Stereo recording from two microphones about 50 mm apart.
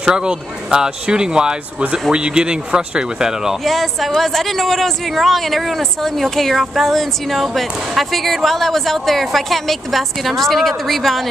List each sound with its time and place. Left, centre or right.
0.0 s speech: centre
3.6 s speech: centre